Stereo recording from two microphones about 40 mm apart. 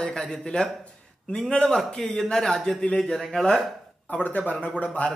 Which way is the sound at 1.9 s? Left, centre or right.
Centre.